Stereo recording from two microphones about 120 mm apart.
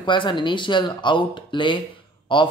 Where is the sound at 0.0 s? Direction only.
40° left (ahead or behind).